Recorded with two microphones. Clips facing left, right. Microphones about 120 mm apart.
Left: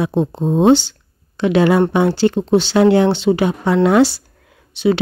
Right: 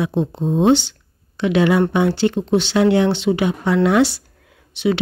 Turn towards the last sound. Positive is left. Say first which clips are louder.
# left 3 dB
turn(degrees=35)  # may be behind; listen again after turning